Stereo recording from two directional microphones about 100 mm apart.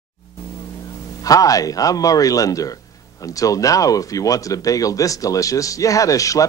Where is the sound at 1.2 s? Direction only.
35° left (ahead or behind).